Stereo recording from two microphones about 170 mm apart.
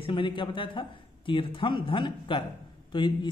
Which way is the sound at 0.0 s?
30° left (ahead or behind).